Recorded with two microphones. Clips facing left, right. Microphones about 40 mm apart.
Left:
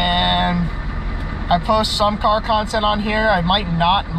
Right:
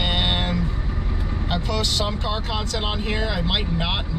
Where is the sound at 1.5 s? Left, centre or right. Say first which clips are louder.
Left 10 dB; centre.